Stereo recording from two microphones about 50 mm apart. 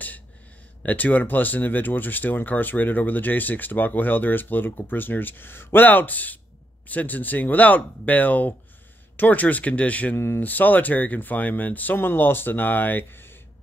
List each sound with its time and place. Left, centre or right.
0.8 s speech: left
10.1 s speech: left
10.4 s speech: left